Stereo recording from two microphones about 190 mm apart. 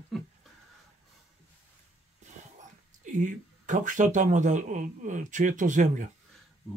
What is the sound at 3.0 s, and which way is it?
Speech, 40° right (ahead or behind).